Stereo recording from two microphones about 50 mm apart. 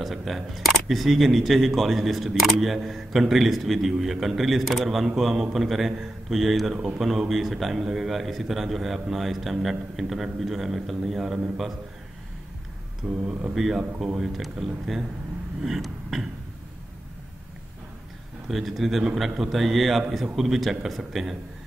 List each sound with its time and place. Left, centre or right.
0.0 s speech: centre
13.2 s speech: centre
15.6 s a sound: centre
18.5 s speech: centre